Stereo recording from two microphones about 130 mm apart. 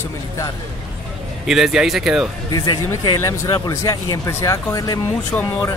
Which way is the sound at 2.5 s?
35° left (ahead or behind).